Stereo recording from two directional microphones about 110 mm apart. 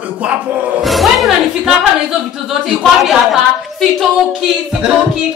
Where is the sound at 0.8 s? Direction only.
Centre (ahead or behind).